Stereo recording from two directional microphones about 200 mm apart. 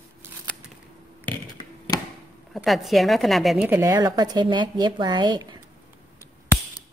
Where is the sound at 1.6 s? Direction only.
25° left (ahead or behind).